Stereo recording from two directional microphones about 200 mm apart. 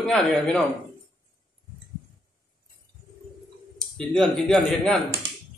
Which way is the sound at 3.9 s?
Centre (ahead or behind).